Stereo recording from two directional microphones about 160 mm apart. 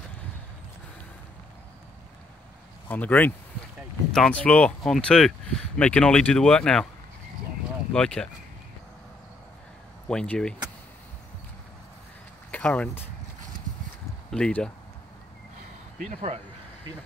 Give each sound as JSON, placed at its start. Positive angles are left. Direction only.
{"t": 2.9, "sound": "speech", "side_deg": 10}
{"t": 7.9, "sound": "speech", "side_deg": 5}
{"t": 10.0, "sound": "speech", "side_deg": 5}
{"t": 12.4, "sound": "speech", "side_deg": 10}
{"t": 14.3, "sound": "speech", "side_deg": 5}
{"t": 16.1, "sound": "speech", "side_deg": -55}